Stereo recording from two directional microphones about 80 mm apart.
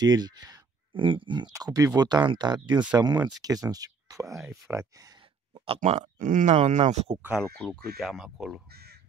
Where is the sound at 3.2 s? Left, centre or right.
Right.